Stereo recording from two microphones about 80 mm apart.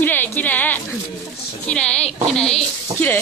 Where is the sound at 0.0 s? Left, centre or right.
Left.